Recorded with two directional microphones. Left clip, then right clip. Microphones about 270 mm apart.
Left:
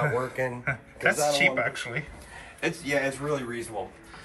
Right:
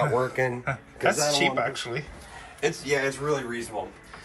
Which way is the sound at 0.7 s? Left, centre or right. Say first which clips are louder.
Even; centre.